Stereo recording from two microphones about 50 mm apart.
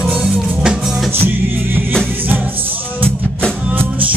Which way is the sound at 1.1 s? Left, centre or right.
Right.